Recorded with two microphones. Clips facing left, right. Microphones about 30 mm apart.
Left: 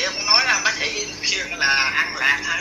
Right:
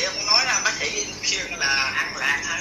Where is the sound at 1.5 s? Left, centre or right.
Left.